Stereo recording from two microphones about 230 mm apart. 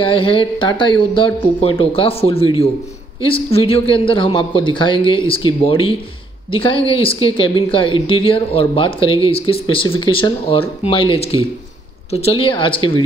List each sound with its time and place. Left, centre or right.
0.0 s a woman's voice: left